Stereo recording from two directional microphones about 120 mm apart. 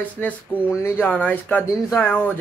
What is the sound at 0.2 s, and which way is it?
Speech, 15° left (ahead or behind).